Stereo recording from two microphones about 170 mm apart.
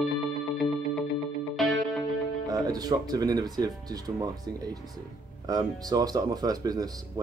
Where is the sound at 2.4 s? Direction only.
20° right (ahead or behind).